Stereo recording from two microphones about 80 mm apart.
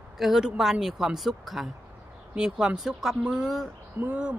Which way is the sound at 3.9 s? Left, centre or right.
Centre.